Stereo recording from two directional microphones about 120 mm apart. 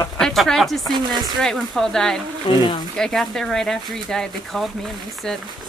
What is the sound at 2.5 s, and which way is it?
Speech, 50° left (ahead or behind).